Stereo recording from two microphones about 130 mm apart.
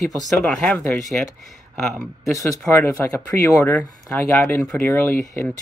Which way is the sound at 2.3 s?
20° left (ahead or behind).